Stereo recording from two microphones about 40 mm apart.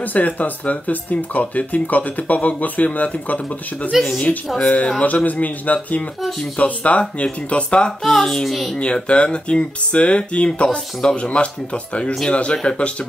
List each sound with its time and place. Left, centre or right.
0.0 s speech: left
3.9 s a woman's voice: centre
4.6 s speech: left
8.0 s a child's voice: centre
8.7 s speech: left